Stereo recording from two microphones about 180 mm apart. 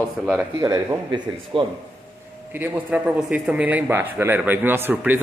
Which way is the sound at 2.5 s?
10° right (ahead or behind).